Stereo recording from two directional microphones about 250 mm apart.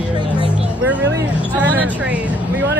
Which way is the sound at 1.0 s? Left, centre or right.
Right.